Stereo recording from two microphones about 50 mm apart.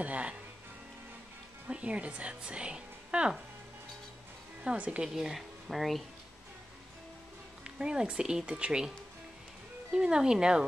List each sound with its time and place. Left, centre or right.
0.0 s music: right
1.7 s speech: right
4.6 s a woman's voice: right
5.0 s speech: centre
7.6 s speech: centre
9.9 s speech: centre